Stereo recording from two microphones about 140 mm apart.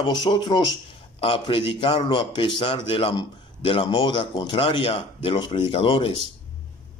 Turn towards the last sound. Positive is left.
turn(degrees=40)  # may be behind; listen again after turning